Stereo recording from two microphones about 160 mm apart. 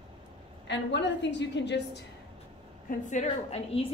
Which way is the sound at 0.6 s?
90° left.